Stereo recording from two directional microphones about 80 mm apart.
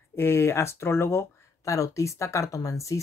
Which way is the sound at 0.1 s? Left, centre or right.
Left.